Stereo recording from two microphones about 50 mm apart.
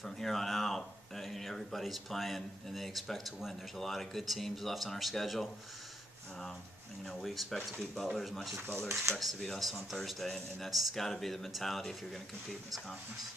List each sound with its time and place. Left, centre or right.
0.0 s speech: centre
7.1 s speech: centre
8.6 s speech: right
9.2 s speech: centre